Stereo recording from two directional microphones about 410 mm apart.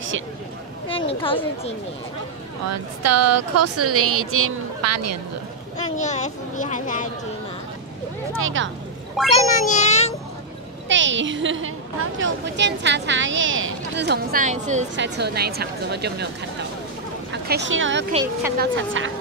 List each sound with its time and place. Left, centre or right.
0.8 s speech: centre
2.7 s speech: right
5.9 s speech: centre
8.4 s a woman's voice: right
9.3 s speech: centre
10.9 s a woman's voice: right
17.3 s a woman's voice: right